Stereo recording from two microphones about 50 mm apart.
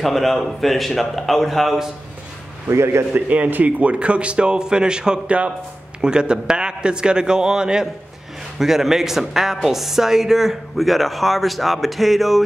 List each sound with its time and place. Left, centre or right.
0.0 s a woman's voice: centre
2.7 s a man's voice: right
3.2 s a man's voice: right; by 12.4 s centre